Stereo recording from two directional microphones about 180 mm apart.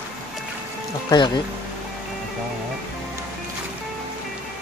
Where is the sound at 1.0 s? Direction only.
25° left (ahead or behind).